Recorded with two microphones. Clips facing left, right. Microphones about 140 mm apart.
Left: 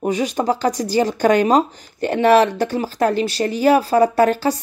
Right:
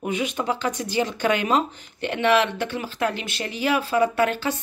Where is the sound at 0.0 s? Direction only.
40° left (ahead or behind).